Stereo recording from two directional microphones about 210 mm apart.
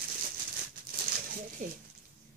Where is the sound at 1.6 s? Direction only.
40° right (ahead or behind).